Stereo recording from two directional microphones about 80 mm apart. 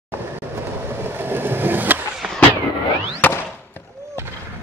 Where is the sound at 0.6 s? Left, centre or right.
Right.